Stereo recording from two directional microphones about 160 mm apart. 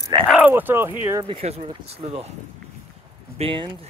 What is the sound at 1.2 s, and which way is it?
Speech, 35° right (ahead or behind).